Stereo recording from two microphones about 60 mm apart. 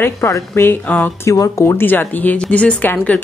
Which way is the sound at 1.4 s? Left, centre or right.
Left.